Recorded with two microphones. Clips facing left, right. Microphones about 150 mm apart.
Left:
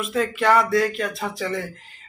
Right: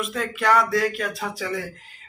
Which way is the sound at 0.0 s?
Centre (ahead or behind).